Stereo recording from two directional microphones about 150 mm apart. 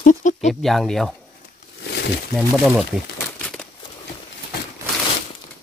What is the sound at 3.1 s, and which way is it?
Crumpling, 5° left (ahead or behind).